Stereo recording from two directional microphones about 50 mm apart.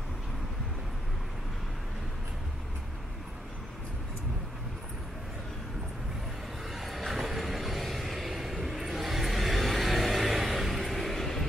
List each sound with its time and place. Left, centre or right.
6.7 s vehicle: centre